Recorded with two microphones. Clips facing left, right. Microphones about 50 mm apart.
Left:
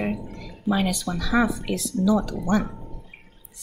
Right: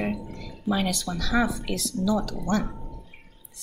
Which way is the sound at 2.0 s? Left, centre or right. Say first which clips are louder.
Left 4 dB; centre.